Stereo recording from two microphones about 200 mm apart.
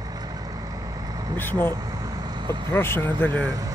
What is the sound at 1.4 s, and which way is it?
Speech, 10° left (ahead or behind).